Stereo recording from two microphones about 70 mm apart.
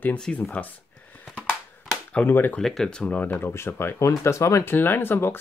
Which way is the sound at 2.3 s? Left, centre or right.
Left.